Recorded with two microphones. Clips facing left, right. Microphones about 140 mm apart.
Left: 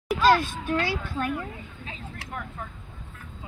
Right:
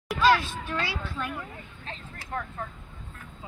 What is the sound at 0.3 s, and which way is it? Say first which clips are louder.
Speech: left 4 dB; 50° left (ahead or behind).